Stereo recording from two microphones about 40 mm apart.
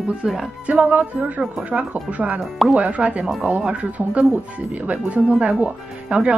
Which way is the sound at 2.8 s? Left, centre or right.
Right.